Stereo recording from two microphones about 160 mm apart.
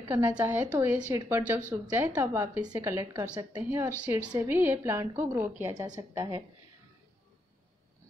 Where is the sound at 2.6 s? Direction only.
20° right (ahead or behind).